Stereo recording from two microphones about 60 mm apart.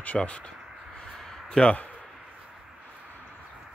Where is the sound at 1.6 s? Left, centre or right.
Centre.